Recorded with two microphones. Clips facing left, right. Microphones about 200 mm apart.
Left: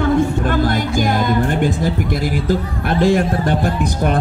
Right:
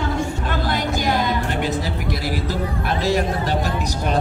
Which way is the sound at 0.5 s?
50° left (ahead or behind).